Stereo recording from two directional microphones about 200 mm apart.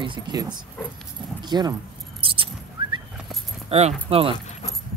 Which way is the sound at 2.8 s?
25° right (ahead or behind).